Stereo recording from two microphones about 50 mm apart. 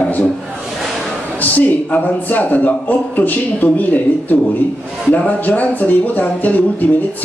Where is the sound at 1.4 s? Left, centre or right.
Left.